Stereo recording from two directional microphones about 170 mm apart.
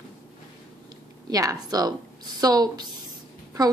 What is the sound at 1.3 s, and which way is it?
A woman's voice, 20° right (ahead or behind).